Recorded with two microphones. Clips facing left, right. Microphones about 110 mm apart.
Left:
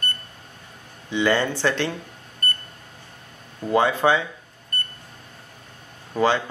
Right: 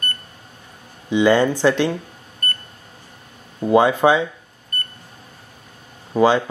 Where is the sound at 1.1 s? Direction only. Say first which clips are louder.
Right 6 dB; 15° right (ahead or behind).